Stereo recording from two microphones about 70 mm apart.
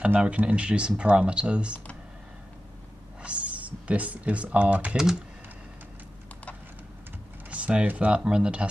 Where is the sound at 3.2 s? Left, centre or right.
Centre.